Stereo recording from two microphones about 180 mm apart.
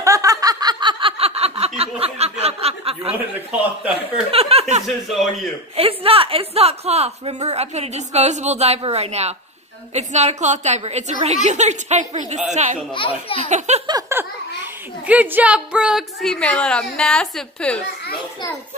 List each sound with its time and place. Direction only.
0.0 s snicker: 20° right (ahead or behind)
4.3 s a woman's voice: 35° right (ahead or behind)
4.8 s a woman's voice: centre (ahead or behind)
5.8 s a woman's voice: 30° right (ahead or behind)
12.9 s speech: 30° left (ahead or behind)
13.5 s a woman's voice: 40° right (ahead or behind)
13.8 s a sound: 15° right (ahead or behind)
15.0 s a woman's voice: 10° right (ahead or behind)